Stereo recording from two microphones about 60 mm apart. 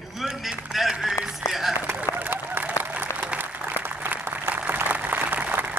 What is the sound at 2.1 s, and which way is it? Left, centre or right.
Run, right.